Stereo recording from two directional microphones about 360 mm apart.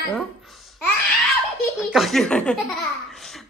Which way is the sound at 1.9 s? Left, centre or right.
Centre.